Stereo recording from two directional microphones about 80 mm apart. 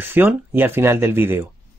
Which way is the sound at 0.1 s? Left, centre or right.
Right.